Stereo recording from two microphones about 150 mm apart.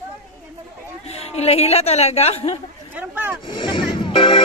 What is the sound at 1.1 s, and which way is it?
A woman's voice, 45° left (ahead or behind).